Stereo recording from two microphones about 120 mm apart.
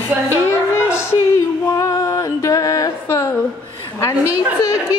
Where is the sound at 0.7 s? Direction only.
20° left (ahead or behind).